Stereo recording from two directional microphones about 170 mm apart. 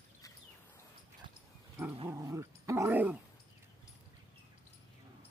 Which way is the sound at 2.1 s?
15° right (ahead or behind).